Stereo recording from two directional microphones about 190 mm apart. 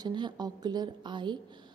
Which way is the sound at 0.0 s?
20° right (ahead or behind).